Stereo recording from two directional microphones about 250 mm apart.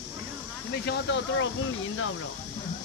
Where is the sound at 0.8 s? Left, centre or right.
Left.